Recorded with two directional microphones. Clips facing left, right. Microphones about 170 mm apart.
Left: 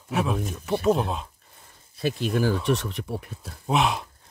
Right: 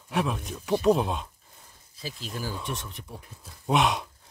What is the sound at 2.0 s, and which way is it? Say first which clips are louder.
Speech: left 12 dB; 65° left (ahead or behind).